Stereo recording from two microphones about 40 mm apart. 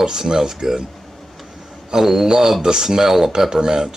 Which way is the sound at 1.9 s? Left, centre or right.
Centre.